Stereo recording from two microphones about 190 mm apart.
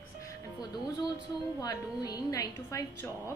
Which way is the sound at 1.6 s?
20° left (ahead or behind).